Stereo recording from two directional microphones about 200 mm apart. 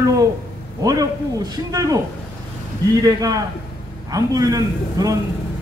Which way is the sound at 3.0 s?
20° right (ahead or behind).